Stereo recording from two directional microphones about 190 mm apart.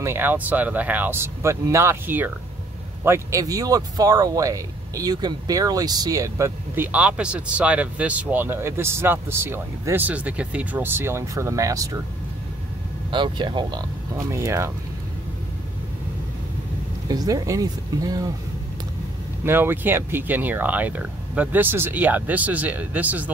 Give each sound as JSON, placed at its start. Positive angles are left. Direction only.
{"t": 0.0, "sound": "speech", "side_deg": -10}
{"t": 13.1, "sound": "speech", "side_deg": -25}
{"t": 17.1, "sound": "speech", "side_deg": -20}
{"t": 19.4, "sound": "speech", "side_deg": -10}